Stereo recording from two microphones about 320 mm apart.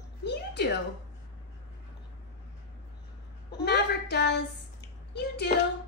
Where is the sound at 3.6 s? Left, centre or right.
Left.